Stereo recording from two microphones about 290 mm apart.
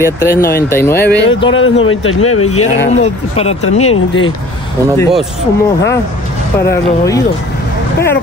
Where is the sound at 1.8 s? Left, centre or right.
Left.